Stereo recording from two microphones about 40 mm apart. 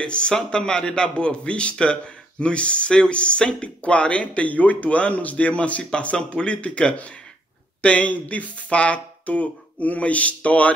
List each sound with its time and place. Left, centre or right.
0.0 s a man's voice: left